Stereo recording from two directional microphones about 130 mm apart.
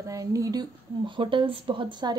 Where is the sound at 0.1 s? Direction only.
25° right (ahead or behind).